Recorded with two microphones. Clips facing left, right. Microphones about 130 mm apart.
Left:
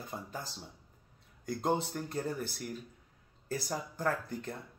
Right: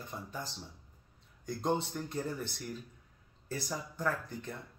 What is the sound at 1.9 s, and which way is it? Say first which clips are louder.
Speech: left 1 dB; 45° left (ahead or behind).